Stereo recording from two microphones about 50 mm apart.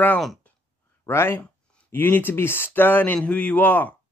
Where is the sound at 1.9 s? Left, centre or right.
Left.